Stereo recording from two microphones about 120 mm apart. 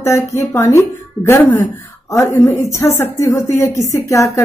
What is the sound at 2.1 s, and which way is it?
Speech, 20° left (ahead or behind).